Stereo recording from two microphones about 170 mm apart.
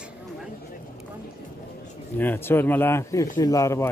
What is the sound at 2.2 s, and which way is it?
Speech, 10° left (ahead or behind).